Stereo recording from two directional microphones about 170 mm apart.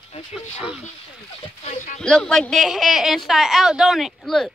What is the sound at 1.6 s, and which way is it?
Speech, 45° left (ahead or behind).